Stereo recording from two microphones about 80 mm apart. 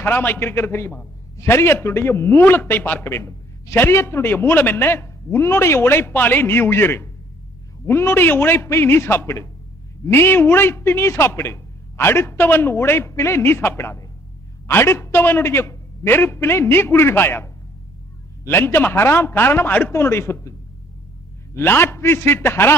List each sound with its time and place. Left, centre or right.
0.0 s a man's voice: left
21.5 s a man's voice: left